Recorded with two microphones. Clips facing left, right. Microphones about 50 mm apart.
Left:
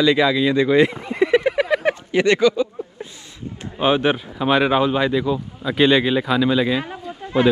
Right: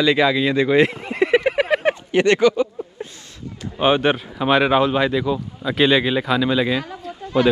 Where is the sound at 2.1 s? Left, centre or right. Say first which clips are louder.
Right 1 dB; right.